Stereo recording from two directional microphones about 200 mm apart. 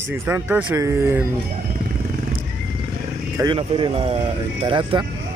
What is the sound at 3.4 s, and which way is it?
Speech, 25° right (ahead or behind).